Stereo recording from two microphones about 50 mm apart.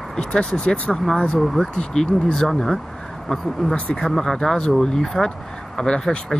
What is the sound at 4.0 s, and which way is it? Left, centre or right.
Speech, centre.